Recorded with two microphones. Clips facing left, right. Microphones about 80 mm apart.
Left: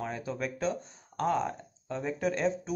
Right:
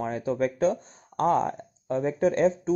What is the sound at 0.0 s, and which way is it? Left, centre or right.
Speech, right.